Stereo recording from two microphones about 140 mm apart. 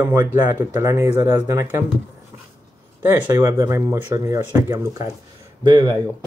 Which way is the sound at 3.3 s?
20° right (ahead or behind).